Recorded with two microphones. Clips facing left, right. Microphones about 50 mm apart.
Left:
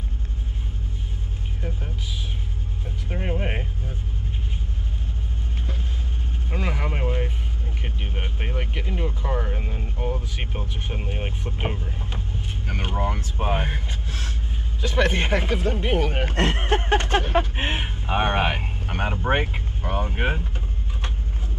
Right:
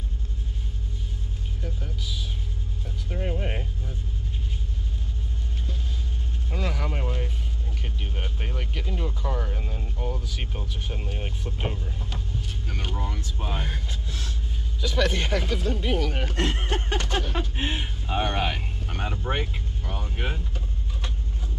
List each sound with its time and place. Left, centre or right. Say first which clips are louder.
2.8 s vehicle: left 1 dB; left
6.5 s vehicle: left 2 dB; left
12.6 s speech: left 8 dB; left